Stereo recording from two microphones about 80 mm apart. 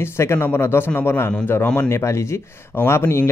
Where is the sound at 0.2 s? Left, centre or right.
Left.